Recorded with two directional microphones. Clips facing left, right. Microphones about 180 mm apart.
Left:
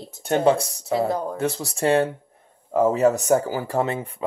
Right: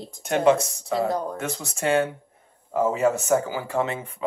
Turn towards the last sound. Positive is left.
turn(degrees=35)  # may be behind; listen again after turning